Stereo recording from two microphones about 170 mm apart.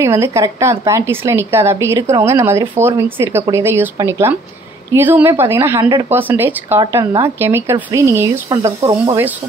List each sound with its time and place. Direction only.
0.0 s a woman's voice: 15° right (ahead or behind)